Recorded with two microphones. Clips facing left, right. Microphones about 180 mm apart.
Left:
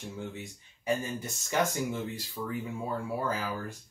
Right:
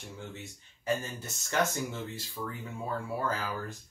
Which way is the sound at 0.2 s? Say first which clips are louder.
Left 4 dB; 15° left (ahead or behind).